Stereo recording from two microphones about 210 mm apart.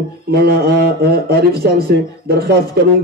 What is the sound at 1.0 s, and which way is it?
A man's voice, 45° right (ahead or behind).